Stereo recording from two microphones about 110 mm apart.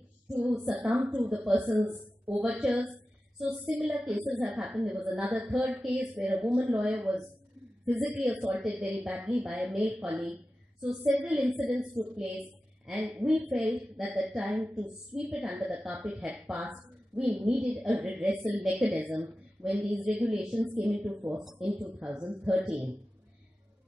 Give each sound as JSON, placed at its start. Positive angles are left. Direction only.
{"t": 0.5, "sound": "a woman's voice", "side_deg": -10}
{"t": 20.5, "sound": "speech", "side_deg": -10}
{"t": 20.8, "sound": "a woman's voice", "side_deg": 0}